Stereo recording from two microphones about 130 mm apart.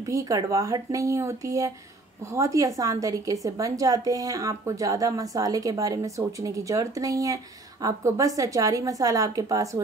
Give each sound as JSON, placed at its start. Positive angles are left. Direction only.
{"t": 0.0, "sound": "a woman's voice", "side_deg": -25}